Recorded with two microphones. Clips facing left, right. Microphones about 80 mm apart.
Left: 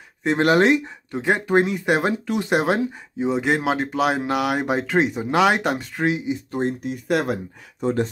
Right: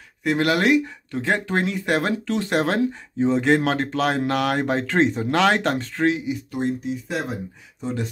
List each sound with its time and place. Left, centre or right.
0.2 s speech: left
6.5 s speech: left
7.8 s speech: left